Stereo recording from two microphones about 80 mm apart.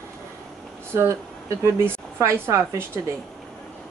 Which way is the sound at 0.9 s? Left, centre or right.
Right.